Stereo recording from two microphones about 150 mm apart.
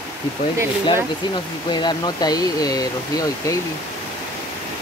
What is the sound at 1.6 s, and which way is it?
Speech, 30° left (ahead or behind).